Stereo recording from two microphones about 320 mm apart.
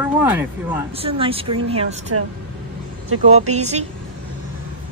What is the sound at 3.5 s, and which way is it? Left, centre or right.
Speech, right.